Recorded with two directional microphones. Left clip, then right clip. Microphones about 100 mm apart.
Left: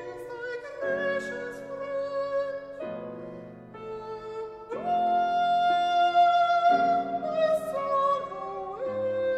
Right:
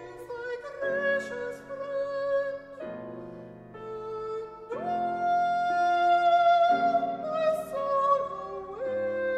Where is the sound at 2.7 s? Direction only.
Centre (ahead or behind).